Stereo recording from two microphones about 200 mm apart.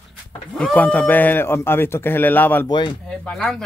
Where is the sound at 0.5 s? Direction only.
5° left (ahead or behind).